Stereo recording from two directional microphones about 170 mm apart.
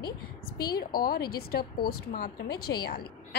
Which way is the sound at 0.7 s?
60° left (ahead or behind).